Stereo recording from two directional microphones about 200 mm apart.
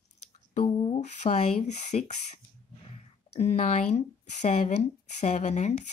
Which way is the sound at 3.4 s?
35° left (ahead or behind).